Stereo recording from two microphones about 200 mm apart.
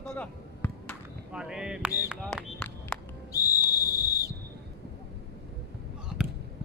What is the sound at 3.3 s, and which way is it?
Whistle, 15° left (ahead or behind).